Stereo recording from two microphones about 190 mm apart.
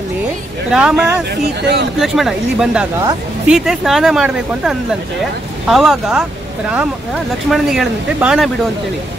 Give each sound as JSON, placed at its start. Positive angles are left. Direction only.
{"t": 0.7, "sound": "speech", "side_deg": -5}
{"t": 1.6, "sound": "speech", "side_deg": -60}
{"t": 2.0, "sound": "speech", "side_deg": 0}
{"t": 7.4, "sound": "speech", "side_deg": 0}